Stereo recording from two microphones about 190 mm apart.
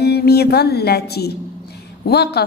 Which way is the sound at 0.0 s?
55° left (ahead or behind).